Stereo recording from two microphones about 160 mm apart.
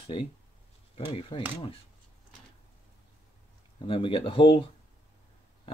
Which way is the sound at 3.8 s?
35° left (ahead or behind).